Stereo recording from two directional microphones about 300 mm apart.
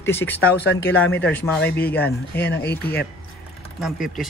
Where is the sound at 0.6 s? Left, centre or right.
Left.